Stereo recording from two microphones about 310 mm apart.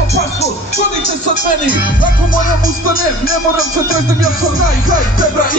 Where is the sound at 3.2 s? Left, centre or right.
Left.